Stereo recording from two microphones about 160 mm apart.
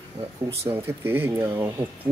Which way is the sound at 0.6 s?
15° right (ahead or behind).